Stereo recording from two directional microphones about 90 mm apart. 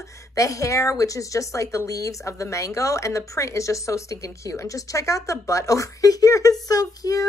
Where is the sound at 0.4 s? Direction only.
35° left (ahead or behind).